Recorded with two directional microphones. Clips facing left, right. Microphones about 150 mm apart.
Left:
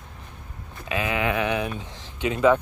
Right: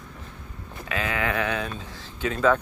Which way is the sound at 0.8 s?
15° left (ahead or behind).